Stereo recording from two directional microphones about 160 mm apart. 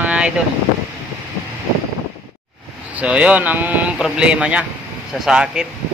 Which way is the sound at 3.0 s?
10° right (ahead or behind).